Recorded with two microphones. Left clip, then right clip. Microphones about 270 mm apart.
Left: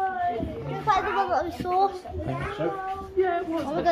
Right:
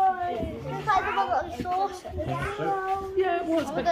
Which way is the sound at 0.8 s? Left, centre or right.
Left.